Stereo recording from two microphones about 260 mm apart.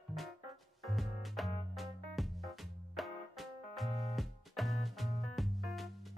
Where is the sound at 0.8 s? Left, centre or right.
Centre.